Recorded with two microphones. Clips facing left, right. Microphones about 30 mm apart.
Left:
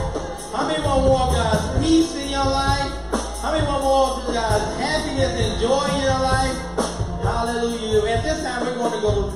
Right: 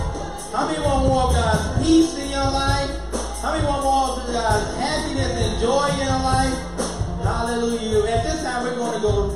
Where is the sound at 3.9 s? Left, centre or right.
Left.